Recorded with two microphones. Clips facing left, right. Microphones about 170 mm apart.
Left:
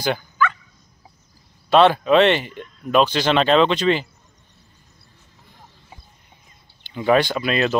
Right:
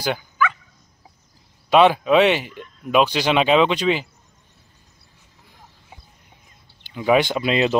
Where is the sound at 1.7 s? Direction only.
10° right (ahead or behind).